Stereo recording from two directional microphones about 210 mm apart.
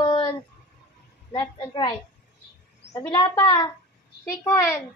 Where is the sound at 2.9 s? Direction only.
20° left (ahead or behind).